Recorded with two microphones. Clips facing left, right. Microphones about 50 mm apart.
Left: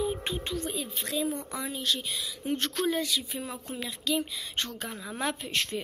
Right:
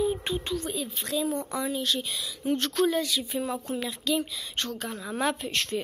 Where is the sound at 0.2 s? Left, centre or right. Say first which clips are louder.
Right 2 dB; centre.